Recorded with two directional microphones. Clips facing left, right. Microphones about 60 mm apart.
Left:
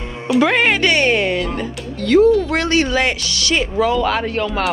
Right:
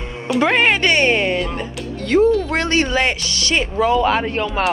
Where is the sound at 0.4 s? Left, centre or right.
Right.